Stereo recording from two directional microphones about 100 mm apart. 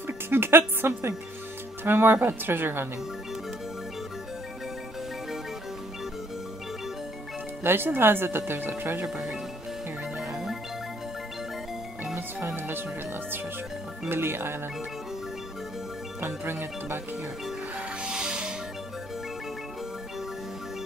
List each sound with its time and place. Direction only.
0.0 s speech: 25° right (ahead or behind)
7.6 s speech: 20° right (ahead or behind)
9.0 s speech: 5° right (ahead or behind)
10.1 s music: 5° right (ahead or behind)
12.2 s music: 20° right (ahead or behind)
14.0 s speech: 20° right (ahead or behind)
16.4 s speech: 25° right (ahead or behind)
17.7 s music: 10° right (ahead or behind)